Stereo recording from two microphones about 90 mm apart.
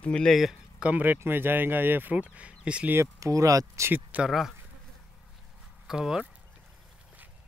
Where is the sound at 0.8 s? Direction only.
20° right (ahead or behind).